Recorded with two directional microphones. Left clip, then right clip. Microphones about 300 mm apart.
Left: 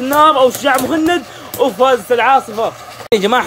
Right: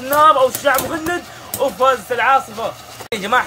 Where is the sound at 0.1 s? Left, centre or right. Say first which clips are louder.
Left 2 dB; left.